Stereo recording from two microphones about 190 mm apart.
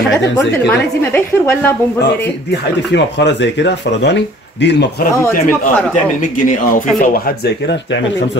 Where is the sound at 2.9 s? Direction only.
65° left (ahead or behind).